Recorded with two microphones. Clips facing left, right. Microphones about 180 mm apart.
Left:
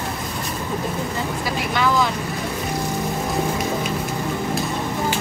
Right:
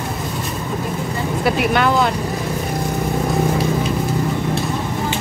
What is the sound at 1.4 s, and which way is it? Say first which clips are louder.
Speech: right 7 dB; 60° right (ahead or behind).